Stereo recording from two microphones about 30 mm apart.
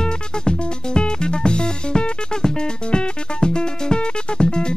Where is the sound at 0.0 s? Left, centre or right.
Left.